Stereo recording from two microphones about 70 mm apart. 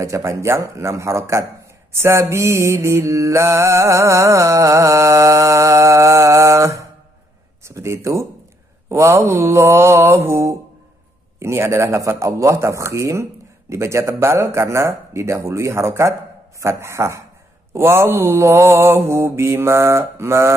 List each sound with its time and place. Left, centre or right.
0.0 s mantra: right